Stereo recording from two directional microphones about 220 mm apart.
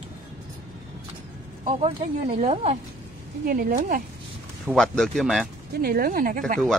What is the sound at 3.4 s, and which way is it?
Speech, 40° right (ahead or behind).